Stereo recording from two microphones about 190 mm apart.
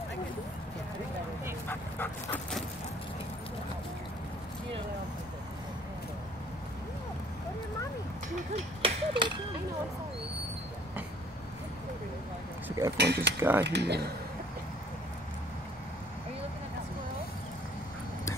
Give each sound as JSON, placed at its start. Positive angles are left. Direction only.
{"t": 1.7, "sound": "dog", "side_deg": 10}
{"t": 8.5, "sound": "a sound", "side_deg": -25}
{"t": 12.6, "sound": "a sound", "side_deg": -15}
{"t": 12.9, "sound": "speech", "side_deg": -60}
{"t": 13.4, "sound": "speech", "side_deg": -10}
{"t": 13.7, "sound": "speech", "side_deg": -60}